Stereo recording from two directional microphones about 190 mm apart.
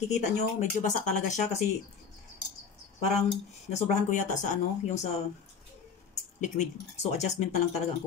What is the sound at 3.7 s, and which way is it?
Speech, 35° left (ahead or behind).